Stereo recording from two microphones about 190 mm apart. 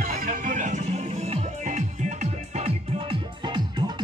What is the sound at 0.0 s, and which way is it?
Music, 45° right (ahead or behind).